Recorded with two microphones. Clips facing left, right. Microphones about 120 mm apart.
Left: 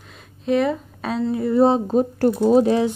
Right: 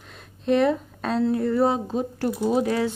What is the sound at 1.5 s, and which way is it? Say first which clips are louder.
Speech: left 8 dB; 25° left (ahead or behind).